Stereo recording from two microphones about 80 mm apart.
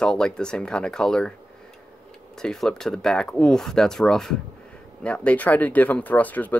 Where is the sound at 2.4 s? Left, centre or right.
Centre.